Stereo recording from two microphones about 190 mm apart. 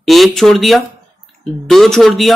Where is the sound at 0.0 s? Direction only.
Centre (ahead or behind).